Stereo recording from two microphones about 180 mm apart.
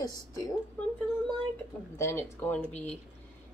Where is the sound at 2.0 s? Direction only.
10° left (ahead or behind).